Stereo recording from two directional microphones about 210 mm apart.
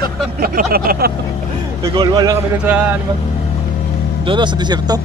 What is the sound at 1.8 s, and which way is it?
Speech, 20° right (ahead or behind).